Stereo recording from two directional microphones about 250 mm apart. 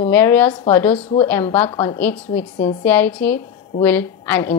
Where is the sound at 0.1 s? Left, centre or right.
Centre.